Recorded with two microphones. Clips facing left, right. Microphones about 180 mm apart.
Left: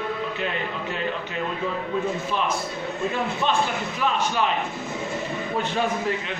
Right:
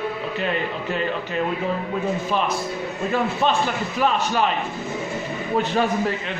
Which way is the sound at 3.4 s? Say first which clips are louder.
Right 2 dB; 40° right (ahead or behind).